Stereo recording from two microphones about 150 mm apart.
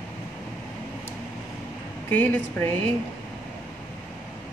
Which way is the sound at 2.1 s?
10° left (ahead or behind).